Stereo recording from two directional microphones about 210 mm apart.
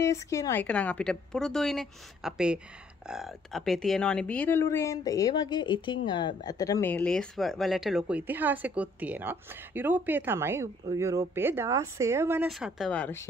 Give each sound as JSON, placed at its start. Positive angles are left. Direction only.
{"t": 0.0, "sound": "a woman's voice", "side_deg": 15}